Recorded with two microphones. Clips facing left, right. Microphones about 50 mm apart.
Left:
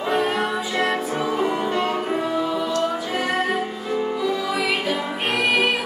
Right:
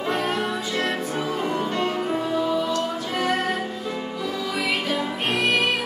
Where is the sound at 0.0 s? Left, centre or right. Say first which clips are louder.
Left 3 dB; centre.